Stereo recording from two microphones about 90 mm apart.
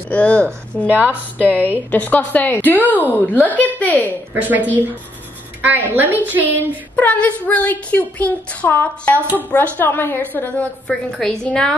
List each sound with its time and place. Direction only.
0.1 s a woman's voice: 15° left (ahead or behind)
0.8 s a woman's voice: 15° right (ahead or behind)
1.4 s a woman's voice: 20° left (ahead or behind)
4.3 s a woman's voice: 20° right (ahead or behind)
6.6 s a woman's voice: 20° left (ahead or behind)